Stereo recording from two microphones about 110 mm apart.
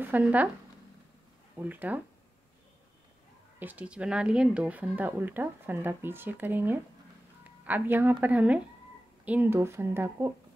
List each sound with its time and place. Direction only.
0.0 s speech: 15° right (ahead or behind)
1.6 s speech: 15° right (ahead or behind)
3.5 s speech: 15° right (ahead or behind)